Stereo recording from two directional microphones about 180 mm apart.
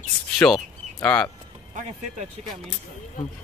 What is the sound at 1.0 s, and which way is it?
Speech, 5° left (ahead or behind).